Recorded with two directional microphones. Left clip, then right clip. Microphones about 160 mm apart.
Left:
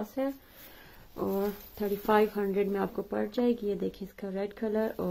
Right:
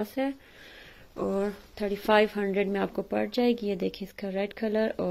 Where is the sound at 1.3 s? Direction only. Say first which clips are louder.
Right 2 dB; 10° right (ahead or behind).